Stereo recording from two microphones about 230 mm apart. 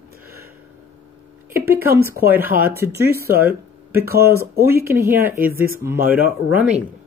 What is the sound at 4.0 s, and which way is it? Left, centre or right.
Speech, right.